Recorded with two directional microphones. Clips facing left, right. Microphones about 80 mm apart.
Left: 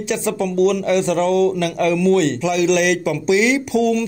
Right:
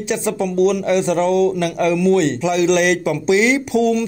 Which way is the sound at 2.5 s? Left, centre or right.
Right.